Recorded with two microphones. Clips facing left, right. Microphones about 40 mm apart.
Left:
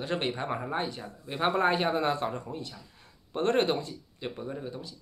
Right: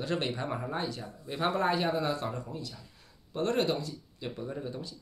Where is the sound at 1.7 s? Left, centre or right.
Left.